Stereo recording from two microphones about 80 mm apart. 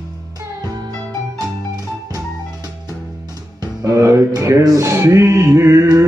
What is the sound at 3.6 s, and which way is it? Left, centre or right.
Music, right.